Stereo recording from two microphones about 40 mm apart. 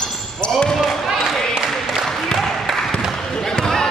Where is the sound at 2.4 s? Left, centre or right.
Centre.